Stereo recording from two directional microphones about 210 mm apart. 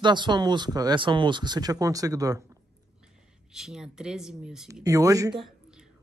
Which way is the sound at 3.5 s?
5° right (ahead or behind).